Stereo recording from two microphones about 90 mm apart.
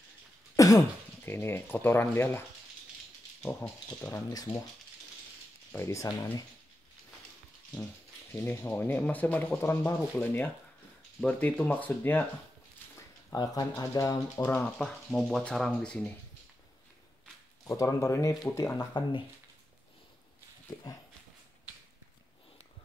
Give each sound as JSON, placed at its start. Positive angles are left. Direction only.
{"t": 0.6, "sound": "throat clearing", "side_deg": 40}
{"t": 1.2, "sound": "speech", "side_deg": 25}
{"t": 3.4, "sound": "speech", "side_deg": 25}
{"t": 5.7, "sound": "speech", "side_deg": 30}
{"t": 8.3, "sound": "speech", "side_deg": 25}
{"t": 9.6, "sound": "speech", "side_deg": 30}
{"t": 12.9, "sound": "speech", "side_deg": 45}
{"t": 14.6, "sound": "speech", "side_deg": 5}
{"t": 17.6, "sound": "speech", "side_deg": 35}
{"t": 18.8, "sound": "speech", "side_deg": 55}